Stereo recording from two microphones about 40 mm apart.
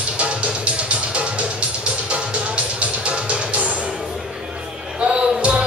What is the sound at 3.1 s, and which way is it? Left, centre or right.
Music, right.